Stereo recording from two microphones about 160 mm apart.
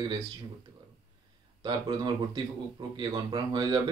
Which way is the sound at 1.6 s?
30° right (ahead or behind).